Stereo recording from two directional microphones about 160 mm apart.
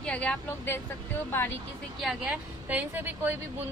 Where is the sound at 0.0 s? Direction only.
5° left (ahead or behind).